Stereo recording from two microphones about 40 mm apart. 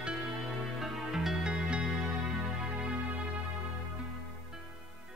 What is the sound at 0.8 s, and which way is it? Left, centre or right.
Music, centre.